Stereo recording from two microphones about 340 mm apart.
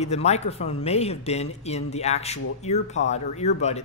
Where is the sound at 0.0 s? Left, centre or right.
Centre.